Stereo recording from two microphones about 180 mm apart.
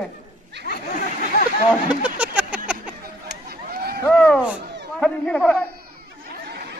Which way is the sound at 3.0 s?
60° right (ahead or behind).